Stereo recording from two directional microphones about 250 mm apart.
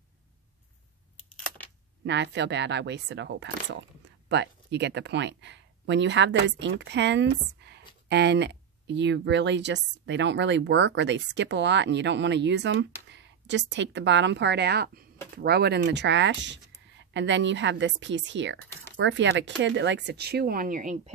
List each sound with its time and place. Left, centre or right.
2.0 s speech: right